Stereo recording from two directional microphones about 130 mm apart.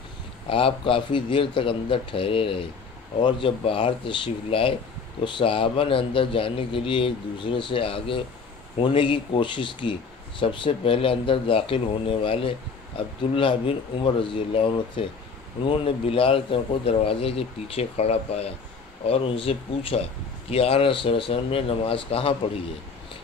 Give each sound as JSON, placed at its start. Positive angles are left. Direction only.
{"t": 0.5, "sound": "a man's voice", "side_deg": 45}